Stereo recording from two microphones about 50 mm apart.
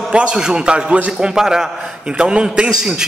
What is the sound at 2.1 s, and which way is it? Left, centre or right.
Speech, centre.